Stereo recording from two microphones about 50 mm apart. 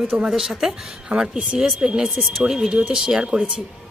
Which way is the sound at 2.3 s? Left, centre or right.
Centre.